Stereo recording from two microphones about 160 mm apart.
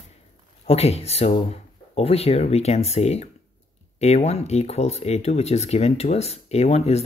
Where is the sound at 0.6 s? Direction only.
40° left (ahead or behind).